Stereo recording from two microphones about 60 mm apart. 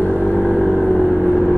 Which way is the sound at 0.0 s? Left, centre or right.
Left.